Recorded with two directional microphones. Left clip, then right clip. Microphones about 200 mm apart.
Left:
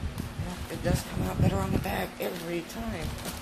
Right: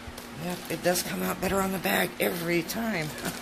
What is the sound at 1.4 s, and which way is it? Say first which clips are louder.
Speech: right 3 dB; 50° right (ahead or behind).